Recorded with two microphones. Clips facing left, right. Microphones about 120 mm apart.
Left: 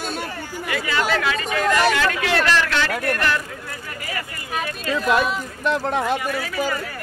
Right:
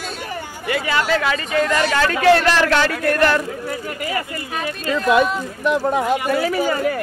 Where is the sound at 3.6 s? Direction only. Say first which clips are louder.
Right 8 dB; 25° right (ahead or behind).